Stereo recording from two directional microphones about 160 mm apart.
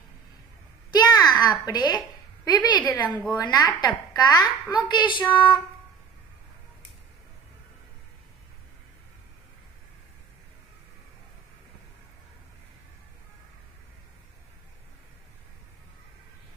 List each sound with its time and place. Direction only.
0.9 s a sound: 25° left (ahead or behind)
2.8 s a woman's voice: 10° left (ahead or behind)
3.3 s a woman's voice: 25° left (ahead or behind)